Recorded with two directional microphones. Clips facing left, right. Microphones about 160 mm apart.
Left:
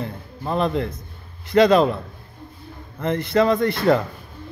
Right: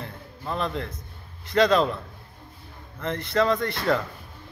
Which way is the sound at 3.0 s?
10° left (ahead or behind).